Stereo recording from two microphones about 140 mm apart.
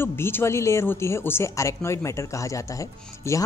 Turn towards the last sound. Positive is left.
turn(degrees=20)  # may be behind; listen again after turning